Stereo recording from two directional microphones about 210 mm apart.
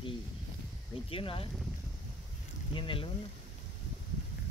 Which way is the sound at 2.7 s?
25° left (ahead or behind).